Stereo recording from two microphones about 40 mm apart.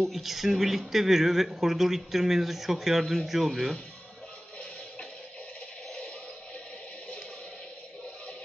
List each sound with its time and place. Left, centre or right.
0.0 s speech: centre